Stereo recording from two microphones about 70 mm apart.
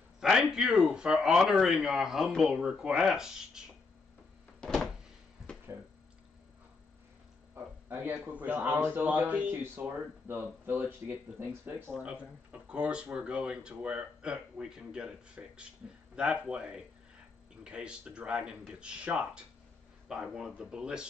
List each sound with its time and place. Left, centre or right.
0.2 s speech: centre
4.6 s a sound: centre
7.5 s speech: right
9.6 s speech: right
12.0 s speech: centre